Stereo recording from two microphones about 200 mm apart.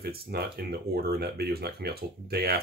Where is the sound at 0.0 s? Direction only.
50° right (ahead or behind).